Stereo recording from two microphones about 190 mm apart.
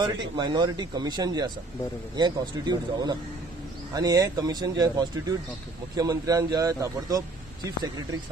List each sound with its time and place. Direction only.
0.0 s a man's voice: 25° right (ahead or behind)